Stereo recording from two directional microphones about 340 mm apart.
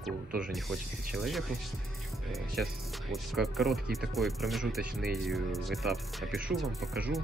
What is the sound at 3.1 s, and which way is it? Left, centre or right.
Speech, centre.